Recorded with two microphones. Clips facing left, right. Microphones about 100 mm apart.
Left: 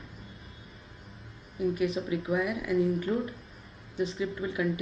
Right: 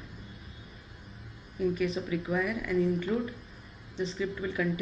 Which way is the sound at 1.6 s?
5° left (ahead or behind).